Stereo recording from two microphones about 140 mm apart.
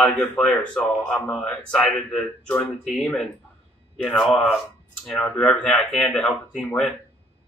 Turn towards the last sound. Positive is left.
turn(degrees=0)  # may be behind; listen again after turning